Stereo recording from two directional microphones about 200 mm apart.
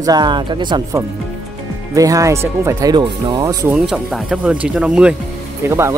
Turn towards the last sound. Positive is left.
turn(degrees=-15)  # may be behind; listen again after turning